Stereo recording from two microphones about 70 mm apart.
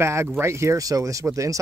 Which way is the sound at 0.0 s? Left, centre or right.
Right.